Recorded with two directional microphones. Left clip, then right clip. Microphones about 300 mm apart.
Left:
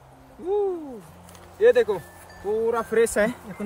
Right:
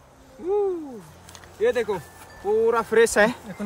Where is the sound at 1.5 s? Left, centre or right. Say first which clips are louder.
Left 4 dB; centre.